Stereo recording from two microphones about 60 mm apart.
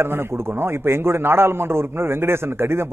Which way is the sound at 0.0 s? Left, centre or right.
Right.